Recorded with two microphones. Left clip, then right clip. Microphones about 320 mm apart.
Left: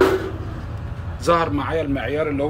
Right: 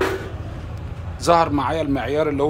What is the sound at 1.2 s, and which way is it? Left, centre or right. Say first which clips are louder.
Speech: right 2 dB; centre.